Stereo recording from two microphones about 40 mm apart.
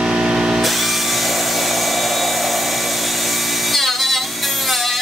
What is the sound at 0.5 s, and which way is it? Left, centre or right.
Tools, centre.